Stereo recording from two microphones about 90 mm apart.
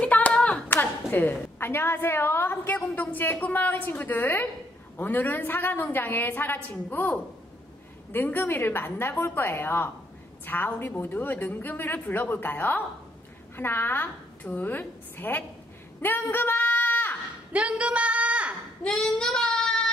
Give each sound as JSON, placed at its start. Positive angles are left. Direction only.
{"t": 0.0, "sound": "a woman's voice", "side_deg": 15}
{"t": 16.0, "sound": "a sound", "side_deg": 20}
{"t": 17.5, "sound": "a woman's voice", "side_deg": -15}
{"t": 18.9, "sound": "child singing", "side_deg": 5}